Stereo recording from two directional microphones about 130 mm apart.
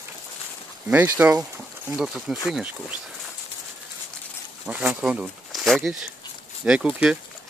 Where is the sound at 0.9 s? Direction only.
15° right (ahead or behind).